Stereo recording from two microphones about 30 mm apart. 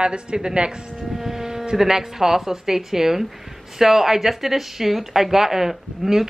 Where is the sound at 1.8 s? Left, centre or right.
Centre.